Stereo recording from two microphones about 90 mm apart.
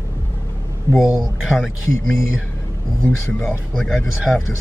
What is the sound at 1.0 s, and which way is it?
Speech, 5° right (ahead or behind).